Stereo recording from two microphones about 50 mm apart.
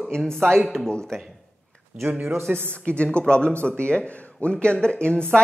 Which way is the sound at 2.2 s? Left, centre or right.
Right.